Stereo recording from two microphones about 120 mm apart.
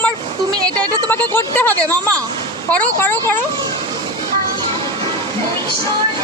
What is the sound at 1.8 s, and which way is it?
Speech, 30° right (ahead or behind).